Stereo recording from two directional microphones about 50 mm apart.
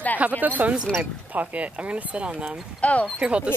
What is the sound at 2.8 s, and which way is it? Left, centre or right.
Speech, left.